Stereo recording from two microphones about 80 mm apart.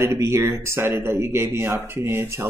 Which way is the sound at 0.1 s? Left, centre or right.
Right.